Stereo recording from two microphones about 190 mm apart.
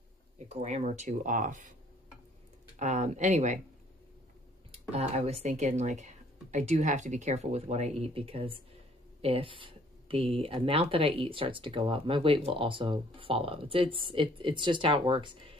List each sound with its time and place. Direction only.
0.5 s speech: 35° right (ahead or behind)
2.8 s speech: 40° right (ahead or behind)
4.9 s speech: 35° right (ahead or behind)